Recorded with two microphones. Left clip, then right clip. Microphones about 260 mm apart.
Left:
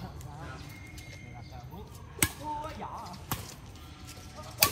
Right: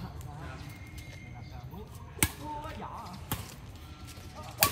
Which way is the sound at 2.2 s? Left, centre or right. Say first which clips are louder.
Left 1 dB; centre.